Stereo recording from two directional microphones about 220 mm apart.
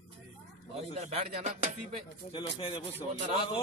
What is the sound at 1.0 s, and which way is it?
Speech, 30° right (ahead or behind).